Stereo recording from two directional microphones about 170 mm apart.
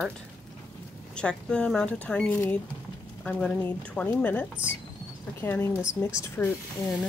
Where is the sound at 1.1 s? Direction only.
5° left (ahead or behind).